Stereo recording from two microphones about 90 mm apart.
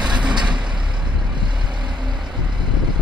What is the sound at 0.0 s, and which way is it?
Vehicle, 10° right (ahead or behind).